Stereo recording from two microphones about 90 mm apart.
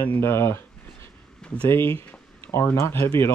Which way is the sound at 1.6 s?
25° left (ahead or behind).